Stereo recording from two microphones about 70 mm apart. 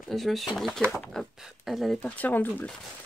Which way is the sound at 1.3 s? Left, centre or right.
Centre.